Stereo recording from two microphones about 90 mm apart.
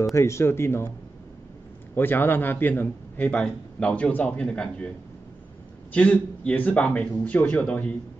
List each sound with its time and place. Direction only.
0.1 s speech: 30° left (ahead or behind)
2.0 s a man's voice: 25° left (ahead or behind)
5.9 s a man's voice: 15° left (ahead or behind)